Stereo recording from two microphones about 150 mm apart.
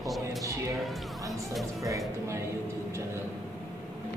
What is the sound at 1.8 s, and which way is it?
Music, 20° right (ahead or behind).